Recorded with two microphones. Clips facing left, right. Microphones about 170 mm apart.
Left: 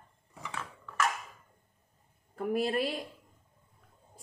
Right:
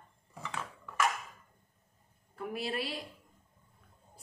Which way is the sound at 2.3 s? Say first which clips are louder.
Left 7 dB; 45° left (ahead or behind).